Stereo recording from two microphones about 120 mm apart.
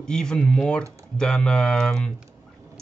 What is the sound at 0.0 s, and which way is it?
Speech, 5° left (ahead or behind).